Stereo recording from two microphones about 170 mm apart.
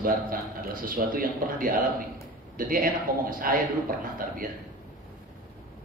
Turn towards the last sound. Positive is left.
turn(degrees=-55)  # may be behind; listen again after turning